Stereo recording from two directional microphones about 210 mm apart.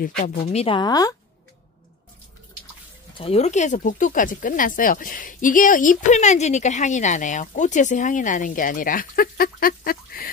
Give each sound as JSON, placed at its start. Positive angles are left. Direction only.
{"t": 0.0, "sound": "speech", "side_deg": 45}
{"t": 0.5, "sound": "speech", "side_deg": 30}
{"t": 3.2, "sound": "speech", "side_deg": 30}